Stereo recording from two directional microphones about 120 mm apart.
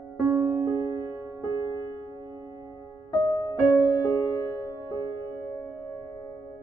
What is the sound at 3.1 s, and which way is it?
Music, 35° left (ahead or behind).